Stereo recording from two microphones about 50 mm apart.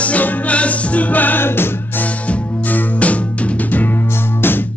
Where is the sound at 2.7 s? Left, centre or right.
Left.